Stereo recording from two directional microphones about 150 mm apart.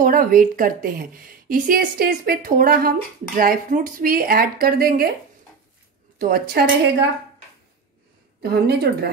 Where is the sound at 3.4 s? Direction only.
65° right (ahead or behind).